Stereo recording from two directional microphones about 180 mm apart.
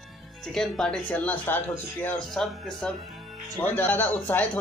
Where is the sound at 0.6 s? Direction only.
5° left (ahead or behind).